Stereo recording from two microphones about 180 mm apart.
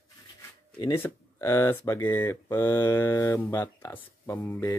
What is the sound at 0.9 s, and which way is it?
Speech, 15° left (ahead or behind).